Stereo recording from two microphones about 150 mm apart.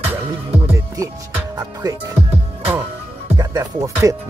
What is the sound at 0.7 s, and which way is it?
Music, 20° right (ahead or behind).